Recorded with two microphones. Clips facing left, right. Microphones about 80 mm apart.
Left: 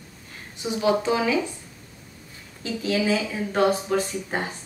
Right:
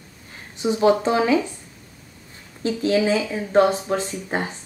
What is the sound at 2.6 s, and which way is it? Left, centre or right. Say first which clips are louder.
A woman's voice: right 4 dB; right.